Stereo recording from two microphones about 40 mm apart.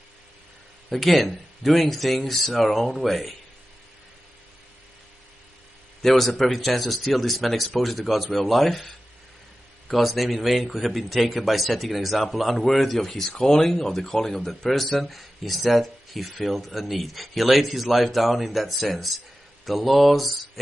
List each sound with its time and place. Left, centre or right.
0.9 s speech: centre
6.0 s speech: centre
9.9 s speech: centre
13.3 s speech: centre